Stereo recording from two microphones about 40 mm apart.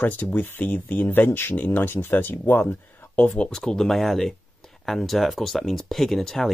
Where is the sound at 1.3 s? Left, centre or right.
Left.